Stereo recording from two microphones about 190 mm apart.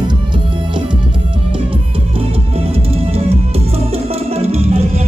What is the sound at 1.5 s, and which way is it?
Music, 30° right (ahead or behind).